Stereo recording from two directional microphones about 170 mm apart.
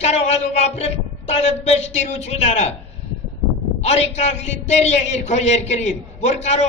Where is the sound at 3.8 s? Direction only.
40° left (ahead or behind).